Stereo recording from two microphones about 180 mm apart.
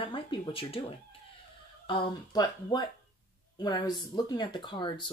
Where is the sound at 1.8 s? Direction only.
30° left (ahead or behind).